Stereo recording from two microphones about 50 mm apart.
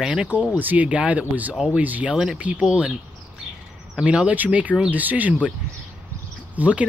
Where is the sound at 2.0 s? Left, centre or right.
Centre.